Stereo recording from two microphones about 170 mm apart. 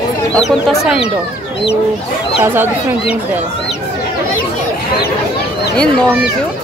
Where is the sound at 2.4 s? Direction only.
10° right (ahead or behind).